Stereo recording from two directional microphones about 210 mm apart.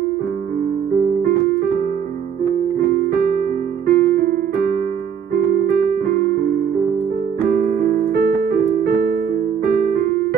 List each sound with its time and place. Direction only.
3.8 s keyboard: 50° right (ahead or behind)
6.0 s electric piano: 50° right (ahead or behind)
7.4 s keyboard: 45° right (ahead or behind)